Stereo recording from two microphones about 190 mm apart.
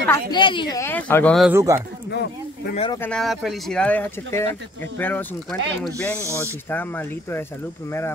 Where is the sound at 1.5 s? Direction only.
15° right (ahead or behind).